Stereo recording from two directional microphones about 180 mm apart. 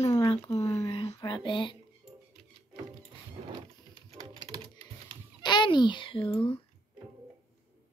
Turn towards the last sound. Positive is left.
turn(degrees=30)  # may be behind; listen again after turning